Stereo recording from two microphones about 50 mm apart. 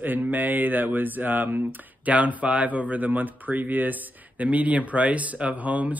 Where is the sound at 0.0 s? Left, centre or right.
Right.